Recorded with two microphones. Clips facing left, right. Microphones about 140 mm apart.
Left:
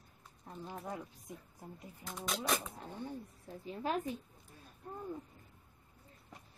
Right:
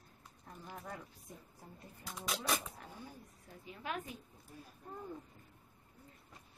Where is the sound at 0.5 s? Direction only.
20° left (ahead or behind).